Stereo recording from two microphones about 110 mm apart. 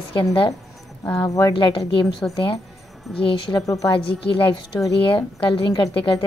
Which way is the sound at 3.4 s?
35° left (ahead or behind).